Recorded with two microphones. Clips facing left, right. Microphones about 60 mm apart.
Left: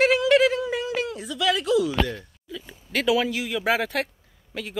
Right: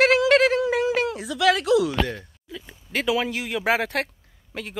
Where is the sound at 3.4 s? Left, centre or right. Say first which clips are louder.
Right 1 dB; right.